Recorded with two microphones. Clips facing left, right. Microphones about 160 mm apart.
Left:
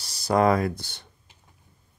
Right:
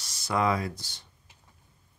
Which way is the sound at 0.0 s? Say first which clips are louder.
Left 6 dB; 35° left (ahead or behind).